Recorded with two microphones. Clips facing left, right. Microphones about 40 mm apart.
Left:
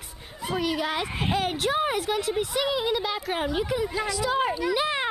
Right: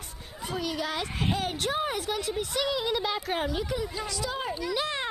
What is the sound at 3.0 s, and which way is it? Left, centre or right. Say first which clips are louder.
Speech: left 1 dB; centre.